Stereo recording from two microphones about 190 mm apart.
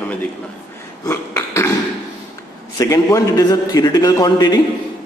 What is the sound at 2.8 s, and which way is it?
A man's voice, 15° left (ahead or behind).